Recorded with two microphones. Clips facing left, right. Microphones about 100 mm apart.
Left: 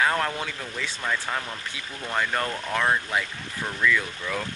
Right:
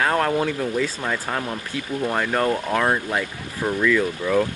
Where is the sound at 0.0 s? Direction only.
5° right (ahead or behind).